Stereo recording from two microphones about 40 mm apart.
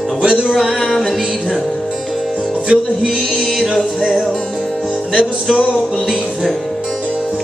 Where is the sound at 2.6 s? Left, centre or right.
Centre.